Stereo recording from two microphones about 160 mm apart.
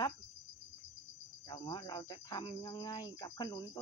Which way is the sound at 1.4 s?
25° left (ahead or behind).